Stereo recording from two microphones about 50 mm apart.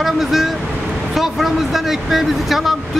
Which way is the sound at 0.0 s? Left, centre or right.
Centre.